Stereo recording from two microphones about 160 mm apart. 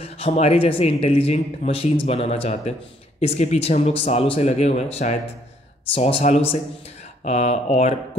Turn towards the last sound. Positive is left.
turn(degrees=45)  # may be behind; listen again after turning